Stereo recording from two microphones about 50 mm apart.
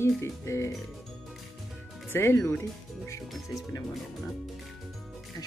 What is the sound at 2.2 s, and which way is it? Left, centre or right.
Speech, left.